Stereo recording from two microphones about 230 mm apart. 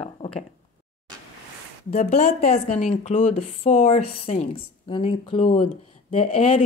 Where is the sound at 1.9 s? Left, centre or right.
Left.